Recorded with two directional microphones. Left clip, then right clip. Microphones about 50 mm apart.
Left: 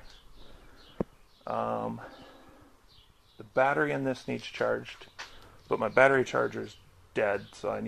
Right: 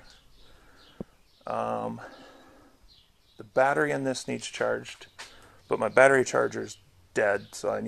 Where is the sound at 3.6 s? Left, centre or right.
Right.